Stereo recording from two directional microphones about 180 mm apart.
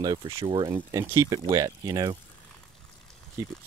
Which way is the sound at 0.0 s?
25° right (ahead or behind).